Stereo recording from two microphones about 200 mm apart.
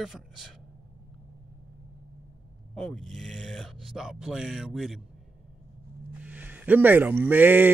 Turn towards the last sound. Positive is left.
turn(degrees=-10)  # may be behind; listen again after turning